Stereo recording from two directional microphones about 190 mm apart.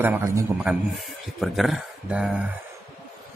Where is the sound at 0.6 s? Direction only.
5° right (ahead or behind).